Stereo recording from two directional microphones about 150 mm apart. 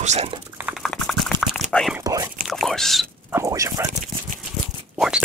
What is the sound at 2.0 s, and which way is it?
Whispering, 25° right (ahead or behind).